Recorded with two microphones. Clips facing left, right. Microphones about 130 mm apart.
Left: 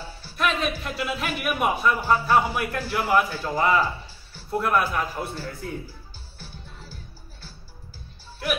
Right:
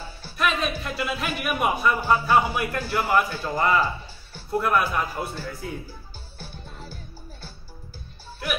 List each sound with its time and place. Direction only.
0.4 s speech: centre (ahead or behind)
6.4 s music: 55° right (ahead or behind)